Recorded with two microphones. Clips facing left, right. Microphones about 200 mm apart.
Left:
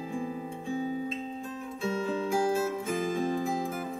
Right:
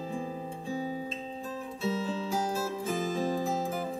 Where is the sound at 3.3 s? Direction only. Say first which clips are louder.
Even; 35° right (ahead or behind).